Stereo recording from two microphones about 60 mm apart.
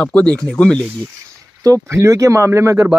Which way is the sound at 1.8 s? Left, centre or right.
Right.